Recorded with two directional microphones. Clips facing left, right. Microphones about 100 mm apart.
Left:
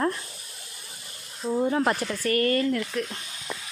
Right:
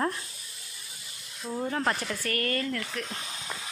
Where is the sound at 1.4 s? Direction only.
25° left (ahead or behind).